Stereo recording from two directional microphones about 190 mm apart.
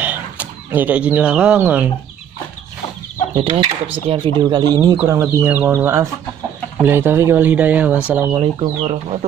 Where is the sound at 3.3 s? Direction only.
30° right (ahead or behind); by 8.4 s 10° right (ahead or behind).